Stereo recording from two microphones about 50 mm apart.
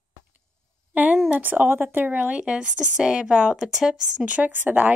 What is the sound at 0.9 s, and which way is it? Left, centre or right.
Speech, right.